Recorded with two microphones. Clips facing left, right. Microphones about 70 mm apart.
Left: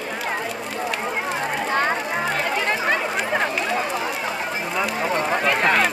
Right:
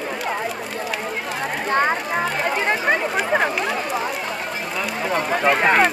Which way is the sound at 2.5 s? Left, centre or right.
Centre.